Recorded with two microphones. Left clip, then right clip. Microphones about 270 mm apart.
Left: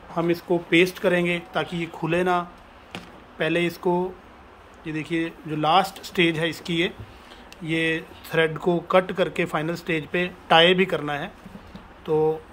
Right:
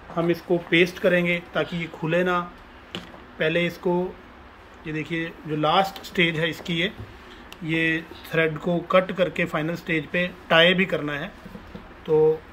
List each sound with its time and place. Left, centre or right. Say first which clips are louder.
0.1 s speech: even; centre
2.9 s a sound: right 2 dB; centre
3.8 s speech: left 1 dB; centre